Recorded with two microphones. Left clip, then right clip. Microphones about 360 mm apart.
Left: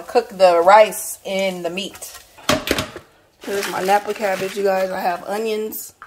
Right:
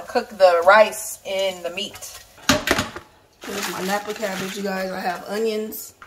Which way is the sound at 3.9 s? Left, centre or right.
Centre.